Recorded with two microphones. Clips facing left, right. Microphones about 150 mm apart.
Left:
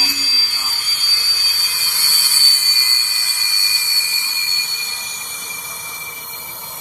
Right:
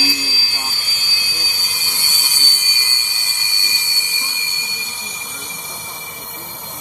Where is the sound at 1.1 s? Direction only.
20° right (ahead or behind).